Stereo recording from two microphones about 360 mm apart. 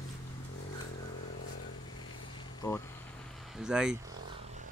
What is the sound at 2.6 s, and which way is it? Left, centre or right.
Vehicle, centre.